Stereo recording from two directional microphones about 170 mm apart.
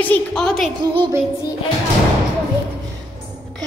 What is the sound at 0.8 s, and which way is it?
Music, 30° right (ahead or behind).